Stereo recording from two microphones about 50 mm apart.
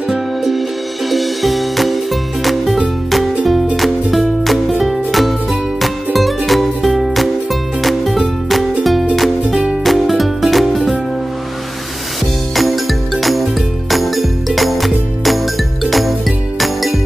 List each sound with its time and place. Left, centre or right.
0.1 s music: centre
12.5 s music: centre